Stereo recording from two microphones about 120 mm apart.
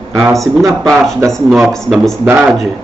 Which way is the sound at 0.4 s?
Centre (ahead or behind).